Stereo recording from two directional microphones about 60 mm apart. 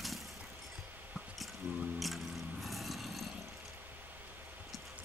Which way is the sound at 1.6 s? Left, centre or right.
Right.